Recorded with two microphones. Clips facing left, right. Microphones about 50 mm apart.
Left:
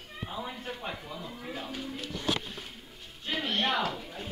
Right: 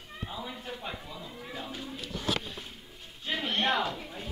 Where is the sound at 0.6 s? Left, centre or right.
Left.